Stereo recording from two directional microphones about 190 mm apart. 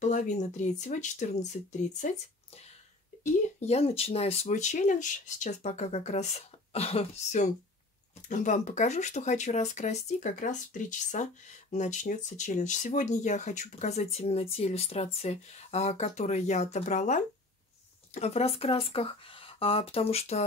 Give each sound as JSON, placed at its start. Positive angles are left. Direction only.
{"t": 0.0, "sound": "speech", "side_deg": 40}